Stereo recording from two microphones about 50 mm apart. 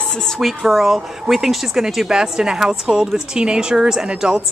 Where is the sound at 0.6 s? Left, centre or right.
Centre.